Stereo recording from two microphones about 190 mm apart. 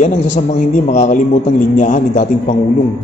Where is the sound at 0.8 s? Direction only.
40° left (ahead or behind).